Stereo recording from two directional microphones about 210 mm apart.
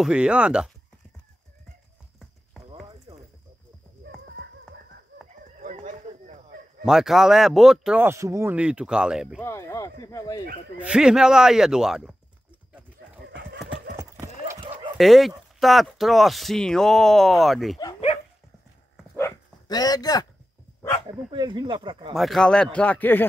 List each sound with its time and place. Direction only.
0.0 s speech: 5° right (ahead or behind)
3.1 s snake: 20° right (ahead or behind)
5.6 s a sound: 35° right (ahead or behind)
6.8 s speech: centre (ahead or behind)
9.4 s speech: 15° left (ahead or behind)
10.8 s speech: 5° right (ahead or behind)
13.3 s fowl: 55° right (ahead or behind)
15.0 s speech: centre (ahead or behind)
17.7 s speech: 20° left (ahead or behind)
19.1 s dog: 15° left (ahead or behind)
21.3 s speech: 20° right (ahead or behind)
22.1 s speech: centre (ahead or behind)